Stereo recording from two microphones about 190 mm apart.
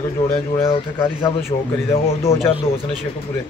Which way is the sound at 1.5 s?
25° left (ahead or behind).